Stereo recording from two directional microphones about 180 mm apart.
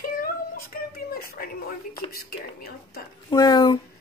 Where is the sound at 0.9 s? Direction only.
55° left (ahead or behind).